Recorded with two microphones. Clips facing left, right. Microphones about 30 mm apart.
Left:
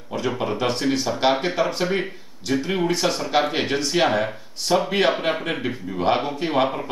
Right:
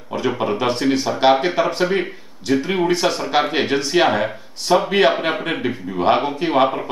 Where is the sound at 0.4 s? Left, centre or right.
Centre.